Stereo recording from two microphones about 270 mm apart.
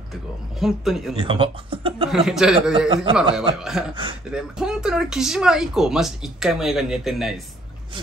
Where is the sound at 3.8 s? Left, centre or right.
Centre.